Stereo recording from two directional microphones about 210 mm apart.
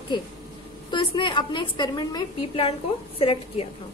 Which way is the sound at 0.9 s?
25° left (ahead or behind).